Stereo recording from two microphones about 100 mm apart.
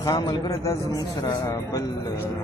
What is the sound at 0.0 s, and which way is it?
Speech, 40° left (ahead or behind).